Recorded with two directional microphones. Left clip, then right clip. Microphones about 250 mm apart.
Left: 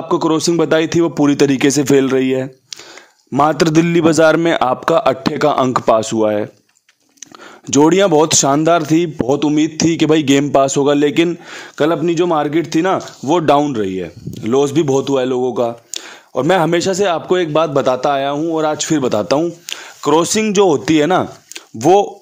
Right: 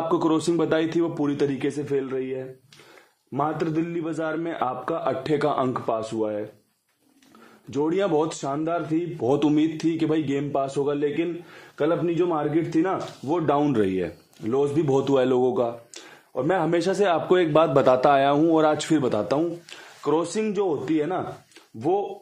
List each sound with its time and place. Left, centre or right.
0.1 s a man's voice: left
5.3 s speech: left
5.9 s speech: left
7.7 s a man's voice: left
9.3 s a man's voice: left
13.7 s a man's voice: centre
14.4 s a man's voice: left
14.9 s a man's voice: centre
15.9 s a sound: left
16.7 s speech: left